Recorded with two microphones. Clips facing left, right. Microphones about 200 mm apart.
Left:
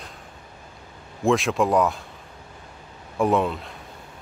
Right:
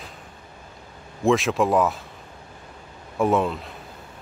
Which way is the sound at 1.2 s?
Centre (ahead or behind).